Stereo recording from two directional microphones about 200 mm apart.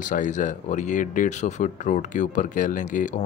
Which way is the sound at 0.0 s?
40° left (ahead or behind).